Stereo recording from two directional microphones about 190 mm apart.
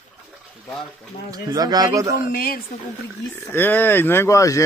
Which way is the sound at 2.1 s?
50° left (ahead or behind).